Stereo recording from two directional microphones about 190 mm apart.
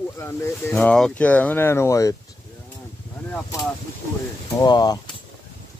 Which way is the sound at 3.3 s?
5° left (ahead or behind).